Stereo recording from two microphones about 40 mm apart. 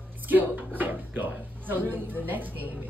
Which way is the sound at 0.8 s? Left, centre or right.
Right.